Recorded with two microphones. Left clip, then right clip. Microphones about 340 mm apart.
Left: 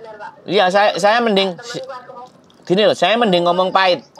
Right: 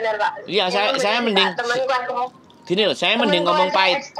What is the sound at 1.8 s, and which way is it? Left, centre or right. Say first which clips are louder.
Speech: right 11 dB; right.